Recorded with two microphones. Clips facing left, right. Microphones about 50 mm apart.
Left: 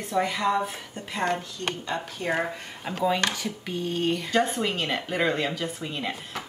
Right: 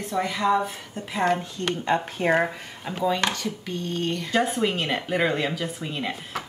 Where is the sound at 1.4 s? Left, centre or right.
Right.